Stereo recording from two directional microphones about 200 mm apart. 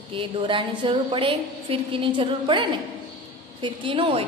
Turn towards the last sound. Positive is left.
turn(degrees=-25)  # may be behind; listen again after turning